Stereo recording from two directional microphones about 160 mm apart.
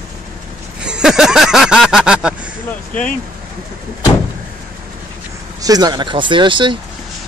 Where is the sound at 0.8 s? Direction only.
5° right (ahead or behind).